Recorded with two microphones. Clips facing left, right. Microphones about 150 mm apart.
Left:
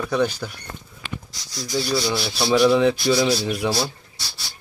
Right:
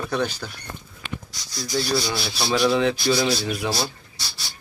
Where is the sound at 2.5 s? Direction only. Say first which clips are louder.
Left 4 dB; centre (ahead or behind).